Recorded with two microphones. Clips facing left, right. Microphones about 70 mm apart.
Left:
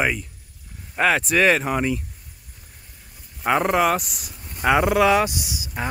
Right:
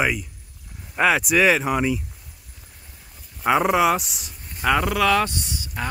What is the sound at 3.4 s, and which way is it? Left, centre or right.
Speech, centre.